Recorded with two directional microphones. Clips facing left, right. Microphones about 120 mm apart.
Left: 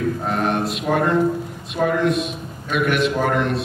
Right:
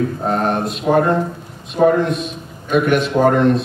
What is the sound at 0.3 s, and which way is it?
Speech, 35° right (ahead or behind).